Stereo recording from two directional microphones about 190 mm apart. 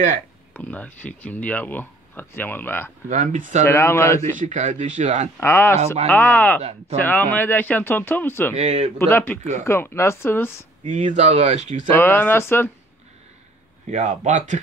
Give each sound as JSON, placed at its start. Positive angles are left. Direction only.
{"t": 0.5, "sound": "speech", "side_deg": 5}
{"t": 3.1, "sound": "speech", "side_deg": -40}
{"t": 3.6, "sound": "speech", "side_deg": 15}
{"t": 4.4, "sound": "speech", "side_deg": -40}
{"t": 5.4, "sound": "speech", "side_deg": 15}
{"t": 8.5, "sound": "speech", "side_deg": -35}
{"t": 8.9, "sound": "speech", "side_deg": 10}
{"t": 10.9, "sound": "speech", "side_deg": -40}
{"t": 11.9, "sound": "speech", "side_deg": 10}
{"t": 13.8, "sound": "speech", "side_deg": -40}